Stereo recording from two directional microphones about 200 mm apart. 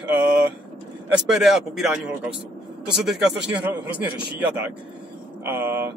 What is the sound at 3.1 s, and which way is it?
Speech, centre (ahead or behind).